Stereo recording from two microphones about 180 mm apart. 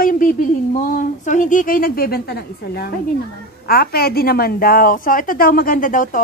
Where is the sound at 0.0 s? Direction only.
50° left (ahead or behind).